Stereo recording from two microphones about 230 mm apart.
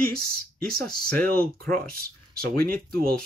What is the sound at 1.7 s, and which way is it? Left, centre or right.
Speech, right.